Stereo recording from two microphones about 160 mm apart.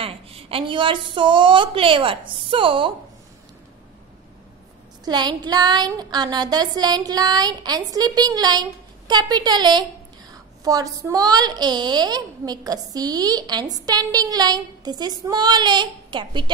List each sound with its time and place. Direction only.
0.0 s a woman's voice: 35° right (ahead or behind)
5.0 s a woman's voice: 25° right (ahead or behind)